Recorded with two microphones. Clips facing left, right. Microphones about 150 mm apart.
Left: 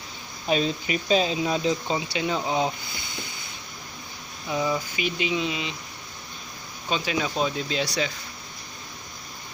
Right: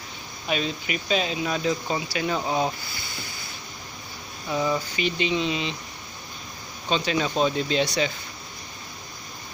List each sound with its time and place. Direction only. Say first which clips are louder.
0.5 s speech: left 3 dB; 35° left (ahead or behind); by 3.0 s 15° left (ahead or behind)
4.5 s speech: right 1 dB; 10° left (ahead or behind)
7.1 s speech: right 3 dB; 5° left (ahead or behind)